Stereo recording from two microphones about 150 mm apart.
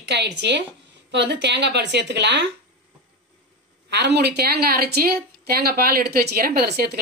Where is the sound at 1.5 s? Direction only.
90° right.